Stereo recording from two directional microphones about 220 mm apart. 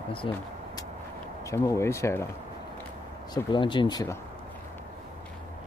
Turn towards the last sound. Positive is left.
turn(degrees=20)  # may be behind; listen again after turning